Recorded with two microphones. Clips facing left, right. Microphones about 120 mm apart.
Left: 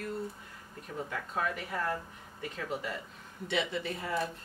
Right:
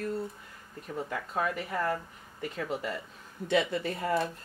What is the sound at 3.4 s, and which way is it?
Speech, 45° right (ahead or behind).